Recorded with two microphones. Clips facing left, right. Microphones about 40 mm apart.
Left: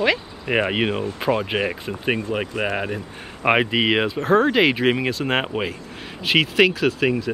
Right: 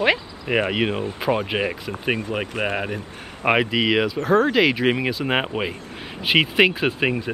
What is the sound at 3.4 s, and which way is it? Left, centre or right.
Speech, centre.